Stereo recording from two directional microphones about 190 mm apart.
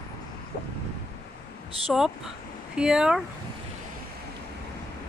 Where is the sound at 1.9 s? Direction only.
Centre (ahead or behind).